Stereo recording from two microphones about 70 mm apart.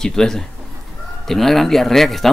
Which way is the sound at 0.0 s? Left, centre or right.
Centre.